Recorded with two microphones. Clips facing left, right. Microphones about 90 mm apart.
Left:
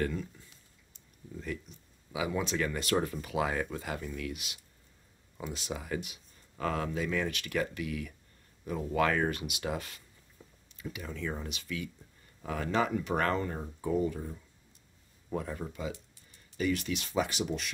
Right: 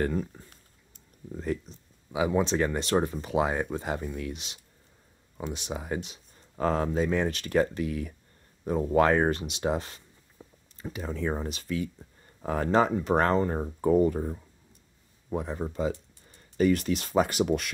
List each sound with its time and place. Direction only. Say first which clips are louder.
0.0 s a sound: right 5 dB; 40° right (ahead or behind)
1.4 s speech: right 8 dB; 35° right (ahead or behind)
10.4 s a sound: right 5 dB; 20° right (ahead or behind)
10.8 s speech: right 6 dB; 35° right (ahead or behind)
13.6 s speech: right 8 dB; 50° right (ahead or behind)
15.2 s speech: right 4 dB; 20° right (ahead or behind)
15.6 s speech: right 8 dB; 35° right (ahead or behind); by 17.6 s 55° right (ahead or behind)